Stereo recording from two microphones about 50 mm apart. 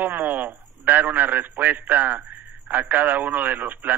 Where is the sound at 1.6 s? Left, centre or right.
Right.